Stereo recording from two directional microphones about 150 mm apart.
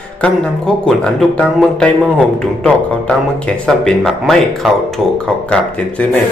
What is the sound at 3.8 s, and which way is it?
Speech, 5° left (ahead or behind).